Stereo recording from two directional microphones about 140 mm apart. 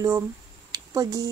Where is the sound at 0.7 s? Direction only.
25° right (ahead or behind).